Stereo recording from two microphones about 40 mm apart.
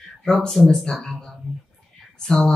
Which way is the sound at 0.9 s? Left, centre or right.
Centre.